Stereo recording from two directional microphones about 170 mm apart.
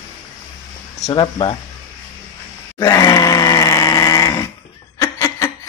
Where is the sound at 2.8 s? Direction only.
20° left (ahead or behind).